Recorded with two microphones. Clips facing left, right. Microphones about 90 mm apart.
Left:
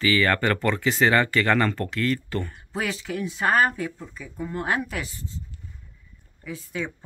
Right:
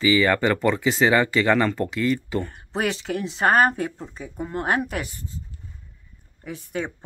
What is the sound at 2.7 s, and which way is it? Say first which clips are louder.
Speech: right 3 dB; 60° right (ahead or behind).